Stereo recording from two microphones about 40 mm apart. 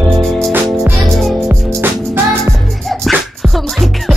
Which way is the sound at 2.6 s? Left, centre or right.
Centre.